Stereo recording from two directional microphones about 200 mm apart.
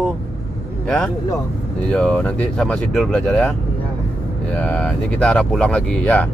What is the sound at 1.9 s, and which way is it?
Speech, 5° left (ahead or behind).